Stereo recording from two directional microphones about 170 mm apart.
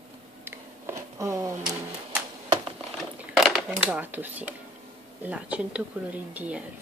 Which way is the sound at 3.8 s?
10° right (ahead or behind).